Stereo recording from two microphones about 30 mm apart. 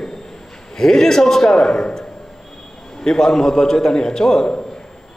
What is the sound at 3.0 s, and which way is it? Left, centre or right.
A man's voice, centre.